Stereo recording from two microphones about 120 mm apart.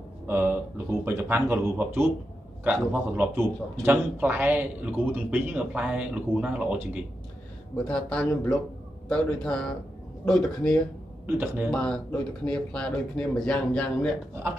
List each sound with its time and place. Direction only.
0.3 s a man's voice: 20° right (ahead or behind)
7.7 s speech: 10° left (ahead or behind)
11.2 s a man's voice: 15° right (ahead or behind)
11.7 s speech: 10° left (ahead or behind)